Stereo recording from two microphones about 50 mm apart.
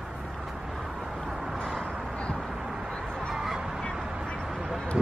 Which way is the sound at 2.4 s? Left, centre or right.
Centre.